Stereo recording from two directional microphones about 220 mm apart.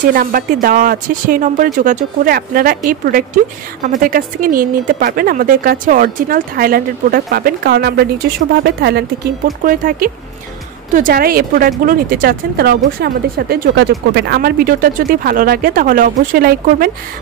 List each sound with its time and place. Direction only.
0.1 s speech: 40° right (ahead or behind)